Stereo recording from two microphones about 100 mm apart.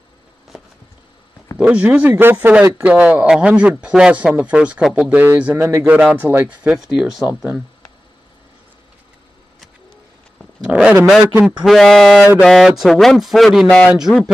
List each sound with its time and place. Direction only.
1.6 s a man's voice: 15° right (ahead or behind)
5.1 s speech: 15° right (ahead or behind)
5.9 s a man's voice: 15° right (ahead or behind)
10.7 s a man's voice: 15° right (ahead or behind)
11.4 s a man's voice: centre (ahead or behind)